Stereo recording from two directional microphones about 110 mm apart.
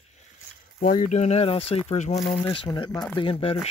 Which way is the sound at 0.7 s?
85° left.